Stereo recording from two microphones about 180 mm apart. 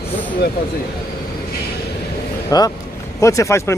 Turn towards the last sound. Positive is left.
turn(degrees=15)  # may be behind; listen again after turning